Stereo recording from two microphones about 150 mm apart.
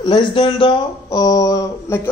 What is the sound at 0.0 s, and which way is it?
Speech, 30° left (ahead or behind).